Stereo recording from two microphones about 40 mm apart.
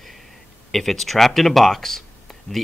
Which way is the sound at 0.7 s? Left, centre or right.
Centre.